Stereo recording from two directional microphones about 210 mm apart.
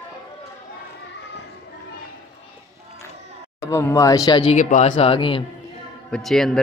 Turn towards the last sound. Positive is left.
turn(degrees=0)  # may be behind; listen again after turning